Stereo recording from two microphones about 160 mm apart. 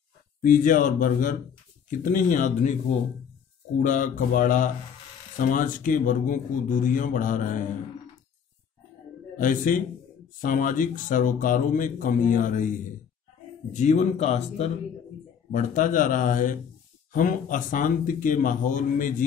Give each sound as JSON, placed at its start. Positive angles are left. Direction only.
{"t": 0.4, "sound": "speech", "side_deg": 55}
{"t": 3.7, "sound": "speech", "side_deg": 55}
{"t": 9.4, "sound": "speech", "side_deg": 55}
{"t": 13.7, "sound": "speech", "side_deg": 45}
{"t": 15.5, "sound": "speech", "side_deg": 55}